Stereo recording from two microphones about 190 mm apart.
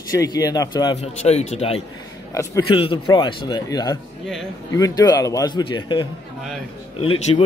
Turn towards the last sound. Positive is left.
turn(degrees=30)  # may be behind; listen again after turning